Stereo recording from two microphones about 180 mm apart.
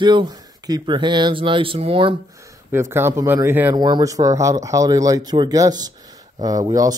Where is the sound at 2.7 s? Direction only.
15° right (ahead or behind).